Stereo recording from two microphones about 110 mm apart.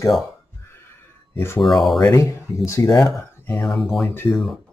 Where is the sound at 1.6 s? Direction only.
Centre (ahead or behind).